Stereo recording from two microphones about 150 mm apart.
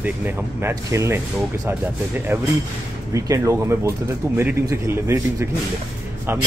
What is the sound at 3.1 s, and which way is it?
Speech, 20° right (ahead or behind).